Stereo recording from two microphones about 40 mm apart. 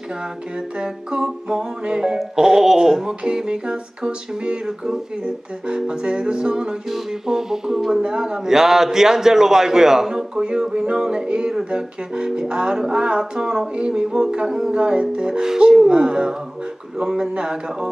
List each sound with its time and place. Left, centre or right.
0.7 s music: centre
4.6 s speech: centre
5.2 s music: centre
6.9 s speech: centre
10.4 s music: right
17.0 s speech: centre
17.3 s music: centre